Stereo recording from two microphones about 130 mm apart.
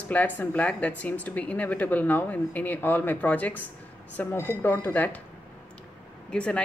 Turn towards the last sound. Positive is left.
turn(degrees=10)  # may be behind; listen again after turning